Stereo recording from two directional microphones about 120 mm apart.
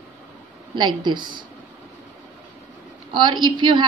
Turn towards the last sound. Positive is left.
turn(degrees=-40)  # may be behind; listen again after turning